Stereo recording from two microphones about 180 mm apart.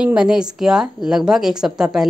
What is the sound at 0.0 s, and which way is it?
Speech, 5° right (ahead or behind).